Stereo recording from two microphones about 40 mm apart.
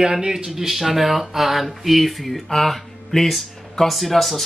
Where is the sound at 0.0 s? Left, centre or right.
Centre.